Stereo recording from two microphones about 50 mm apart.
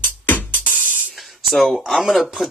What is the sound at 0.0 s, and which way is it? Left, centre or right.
Music, left.